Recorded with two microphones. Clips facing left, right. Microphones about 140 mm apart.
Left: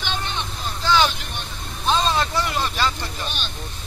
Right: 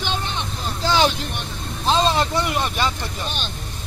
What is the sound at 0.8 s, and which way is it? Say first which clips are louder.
Vehicle: right 1 dB; 30° right (ahead or behind).